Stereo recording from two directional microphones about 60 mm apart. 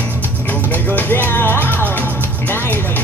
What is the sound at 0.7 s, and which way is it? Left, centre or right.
Music, left.